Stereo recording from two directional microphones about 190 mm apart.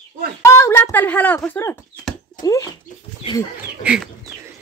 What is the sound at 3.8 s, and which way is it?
Chicken, 5° right (ahead or behind).